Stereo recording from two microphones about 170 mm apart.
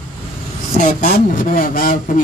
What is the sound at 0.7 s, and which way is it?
Speech, 50° left (ahead or behind).